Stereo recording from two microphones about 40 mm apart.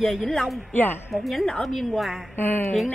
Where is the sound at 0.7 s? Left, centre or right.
Left.